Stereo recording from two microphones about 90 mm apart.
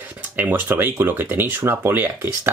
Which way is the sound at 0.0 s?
20° right (ahead or behind).